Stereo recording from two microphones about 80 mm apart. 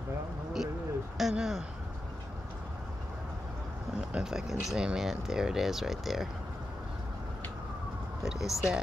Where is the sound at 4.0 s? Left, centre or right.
Centre.